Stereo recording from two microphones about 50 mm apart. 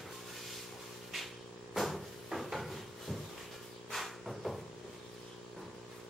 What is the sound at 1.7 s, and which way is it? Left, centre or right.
Cupboard open or close, centre.